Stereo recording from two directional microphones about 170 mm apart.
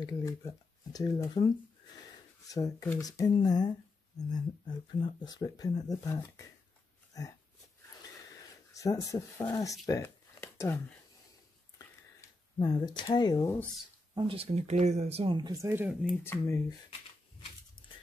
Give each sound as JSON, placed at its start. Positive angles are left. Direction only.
{"t": 0.0, "sound": "speech", "side_deg": 20}
{"t": 8.7, "sound": "speech", "side_deg": 20}
{"t": 12.2, "sound": "speech", "side_deg": 25}
{"t": 14.1, "sound": "speech", "side_deg": -35}